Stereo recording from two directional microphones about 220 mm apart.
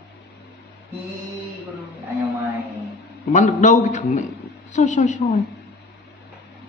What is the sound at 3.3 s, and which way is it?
A man's voice, 35° left (ahead or behind).